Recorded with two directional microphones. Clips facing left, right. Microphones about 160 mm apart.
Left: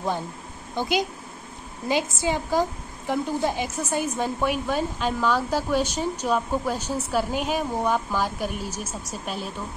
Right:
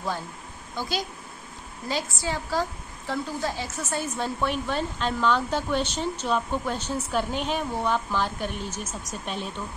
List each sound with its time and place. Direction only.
0.7 s a woman's voice: 20° left (ahead or behind)